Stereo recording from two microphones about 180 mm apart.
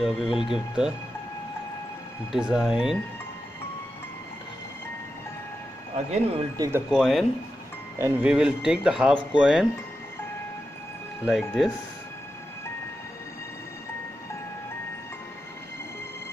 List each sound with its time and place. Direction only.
0.0 s speech: centre (ahead or behind)
2.3 s speech: 5° right (ahead or behind)
5.9 s speech: 35° right (ahead or behind)
6.9 s speech: centre (ahead or behind)
11.2 s speech: 5° right (ahead or behind)